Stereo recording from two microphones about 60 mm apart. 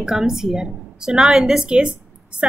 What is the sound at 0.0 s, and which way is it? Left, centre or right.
A woman's voice, centre.